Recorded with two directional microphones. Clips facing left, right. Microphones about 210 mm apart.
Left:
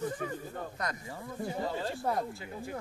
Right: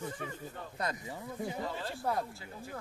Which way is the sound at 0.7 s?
25° right (ahead or behind).